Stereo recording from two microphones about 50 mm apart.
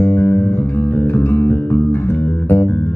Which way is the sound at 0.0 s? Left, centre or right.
Left.